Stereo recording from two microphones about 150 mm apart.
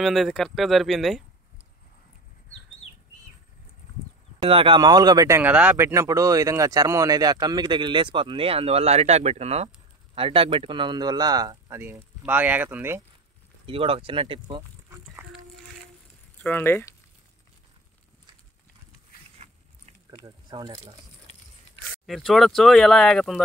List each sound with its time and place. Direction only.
0.0 s speech: centre (ahead or behind)
4.4 s speech: 40° right (ahead or behind)
5.4 s speech: 10° right (ahead or behind); by 11.8 s 25° right (ahead or behind)
12.2 s speech: 10° right (ahead or behind)
13.7 s speech: 35° right (ahead or behind)
16.4 s speech: 15° left (ahead or behind)
19.4 s biting: 45° right (ahead or behind)
20.2 s speech: 30° right (ahead or behind)
22.0 s speech: centre (ahead or behind)